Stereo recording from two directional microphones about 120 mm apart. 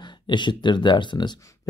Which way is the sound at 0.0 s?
40° left (ahead or behind).